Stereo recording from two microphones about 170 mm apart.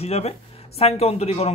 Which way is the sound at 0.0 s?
35° left (ahead or behind).